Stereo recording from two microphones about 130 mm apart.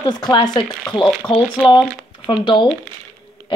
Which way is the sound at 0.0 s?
35° left (ahead or behind).